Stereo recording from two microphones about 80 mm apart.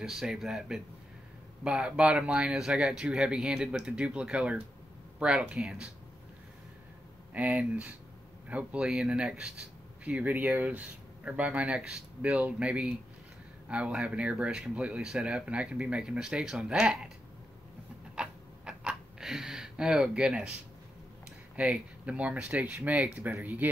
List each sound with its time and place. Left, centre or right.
0.0 s speech: centre
7.3 s speech: centre
18.1 s a sound: centre
21.5 s speech: centre